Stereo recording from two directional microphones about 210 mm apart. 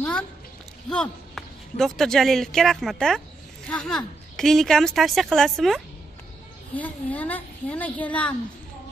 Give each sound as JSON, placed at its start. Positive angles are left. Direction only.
{"t": 0.8, "sound": "a woman's voice", "side_deg": 5}